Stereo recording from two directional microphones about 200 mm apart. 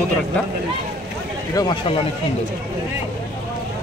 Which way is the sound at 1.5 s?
20° left (ahead or behind).